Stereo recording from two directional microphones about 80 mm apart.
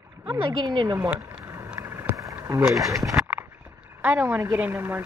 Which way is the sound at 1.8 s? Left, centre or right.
Right.